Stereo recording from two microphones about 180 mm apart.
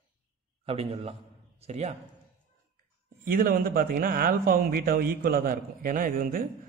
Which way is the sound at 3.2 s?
55° right (ahead or behind).